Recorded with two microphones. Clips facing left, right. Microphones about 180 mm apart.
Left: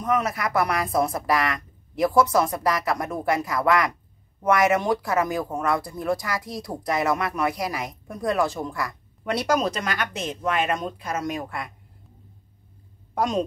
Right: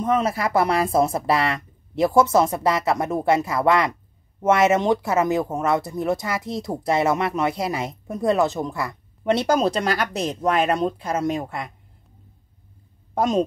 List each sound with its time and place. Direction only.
0.0 s speech: 25° right (ahead or behind)
13.1 s a woman's voice: 25° right (ahead or behind)